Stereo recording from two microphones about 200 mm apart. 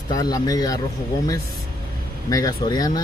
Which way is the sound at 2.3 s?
20° left (ahead or behind).